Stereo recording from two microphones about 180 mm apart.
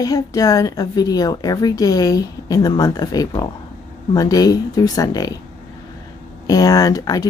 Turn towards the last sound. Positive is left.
turn(degrees=20)  # may be behind; listen again after turning